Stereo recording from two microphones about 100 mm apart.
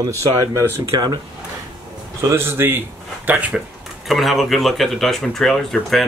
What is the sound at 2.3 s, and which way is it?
Speech, 25° right (ahead or behind).